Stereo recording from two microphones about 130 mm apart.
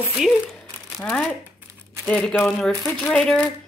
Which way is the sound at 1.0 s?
5° left (ahead or behind).